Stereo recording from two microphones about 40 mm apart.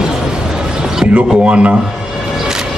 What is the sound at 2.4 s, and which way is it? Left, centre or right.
Music, centre.